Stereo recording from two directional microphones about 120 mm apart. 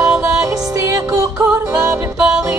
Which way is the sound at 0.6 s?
30° right (ahead or behind).